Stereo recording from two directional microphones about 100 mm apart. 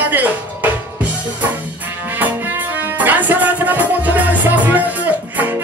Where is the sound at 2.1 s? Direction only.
15° right (ahead or behind).